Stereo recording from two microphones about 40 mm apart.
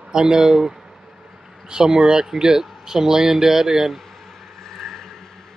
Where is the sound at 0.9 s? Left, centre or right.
Centre.